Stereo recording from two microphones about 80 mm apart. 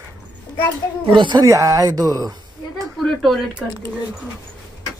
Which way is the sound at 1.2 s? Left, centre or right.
Right.